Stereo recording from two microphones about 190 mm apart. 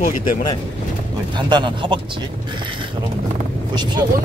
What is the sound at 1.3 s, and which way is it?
Speech, 25° right (ahead or behind).